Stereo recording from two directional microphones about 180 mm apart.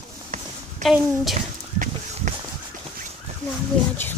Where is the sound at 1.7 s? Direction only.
45° right (ahead or behind).